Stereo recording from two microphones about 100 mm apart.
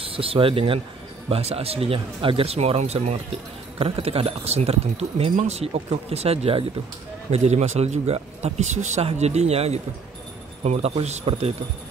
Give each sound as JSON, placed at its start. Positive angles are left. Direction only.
{"t": 0.0, "sound": "speech", "side_deg": -70}
{"t": 1.3, "sound": "speech", "side_deg": -85}
{"t": 3.7, "sound": "speech", "side_deg": -75}